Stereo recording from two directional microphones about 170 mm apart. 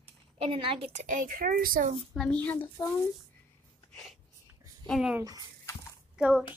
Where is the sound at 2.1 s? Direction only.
5° left (ahead or behind).